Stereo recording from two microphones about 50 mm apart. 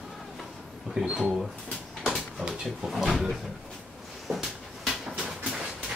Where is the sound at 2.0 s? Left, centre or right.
Centre.